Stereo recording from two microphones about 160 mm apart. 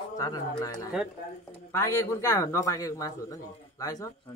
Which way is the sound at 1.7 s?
20° left (ahead or behind).